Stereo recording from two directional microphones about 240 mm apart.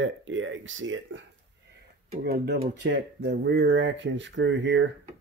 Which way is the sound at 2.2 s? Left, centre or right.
Right.